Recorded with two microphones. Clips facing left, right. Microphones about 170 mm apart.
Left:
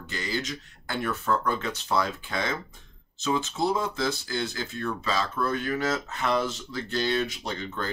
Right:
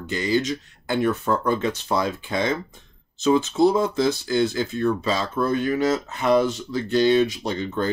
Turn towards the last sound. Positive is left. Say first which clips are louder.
# right 8 dB
turn(degrees=-20)  # may be behind; listen again after turning